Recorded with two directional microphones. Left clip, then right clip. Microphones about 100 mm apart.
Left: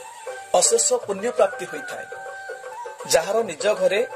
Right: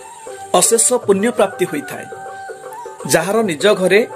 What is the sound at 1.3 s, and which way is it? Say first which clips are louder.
Speech: right 5 dB; 15° right (ahead or behind).